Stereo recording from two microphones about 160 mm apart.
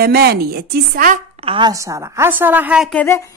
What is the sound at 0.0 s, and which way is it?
Speech, 75° right (ahead or behind).